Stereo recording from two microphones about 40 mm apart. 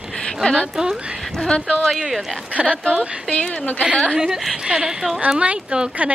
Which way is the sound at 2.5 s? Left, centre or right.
Right.